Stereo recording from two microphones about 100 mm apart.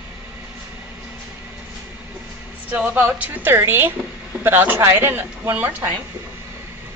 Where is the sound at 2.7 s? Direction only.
15° right (ahead or behind).